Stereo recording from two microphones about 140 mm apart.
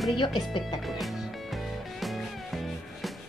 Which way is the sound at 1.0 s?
Centre (ahead or behind).